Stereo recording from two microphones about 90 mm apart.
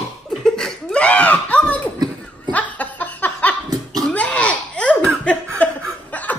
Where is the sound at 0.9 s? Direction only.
15° left (ahead or behind).